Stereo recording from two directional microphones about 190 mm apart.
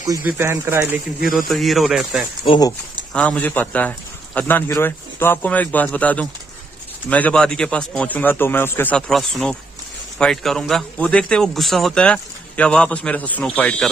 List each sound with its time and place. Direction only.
0.2 s speech: 10° right (ahead or behind)
1.5 s a man's voice: centre (ahead or behind)
2.4 s speech: 25° left (ahead or behind)
3.1 s a man's voice: 5° left (ahead or behind)